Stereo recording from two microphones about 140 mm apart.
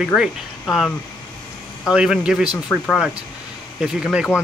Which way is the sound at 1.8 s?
5° right (ahead or behind).